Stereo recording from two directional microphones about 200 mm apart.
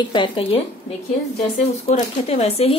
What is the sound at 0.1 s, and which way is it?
Speech, 25° left (ahead or behind).